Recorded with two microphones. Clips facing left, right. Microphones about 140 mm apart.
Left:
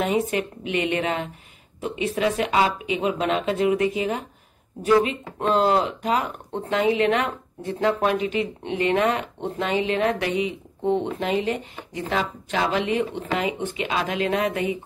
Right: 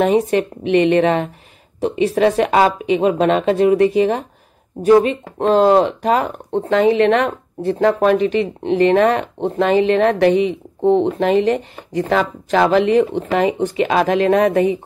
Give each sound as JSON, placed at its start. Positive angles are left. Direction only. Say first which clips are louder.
{"t": 0.0, "sound": "speech", "louder": "right 8 dB", "side_deg": -35}
{"t": 7.0, "sound": "speech", "louder": "right 7 dB", "side_deg": -70}
{"t": 7.2, "sound": "speech", "louder": "right 9 dB", "side_deg": -40}
{"t": 11.4, "sound": "speech", "louder": "right 9 dB", "side_deg": -45}